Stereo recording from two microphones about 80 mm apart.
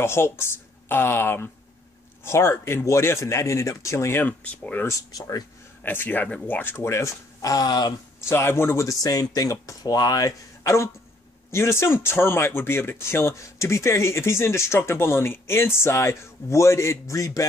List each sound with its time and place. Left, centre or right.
0.0 s speech: left
4.2 s speech: centre
5.9 s speech: left
8.3 s speech: left